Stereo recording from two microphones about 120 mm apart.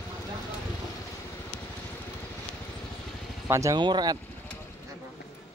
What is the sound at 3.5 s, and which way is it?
Speech, 25° right (ahead or behind).